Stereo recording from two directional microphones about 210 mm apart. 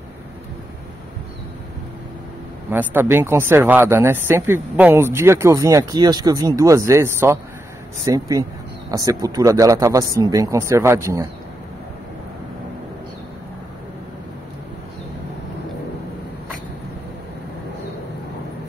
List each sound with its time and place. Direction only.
2.7 s speech: 10° right (ahead or behind)